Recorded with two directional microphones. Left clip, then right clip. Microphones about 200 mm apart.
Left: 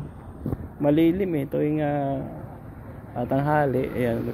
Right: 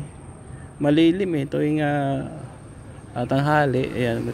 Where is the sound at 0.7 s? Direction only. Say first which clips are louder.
Right 2 dB; 35° right (ahead or behind).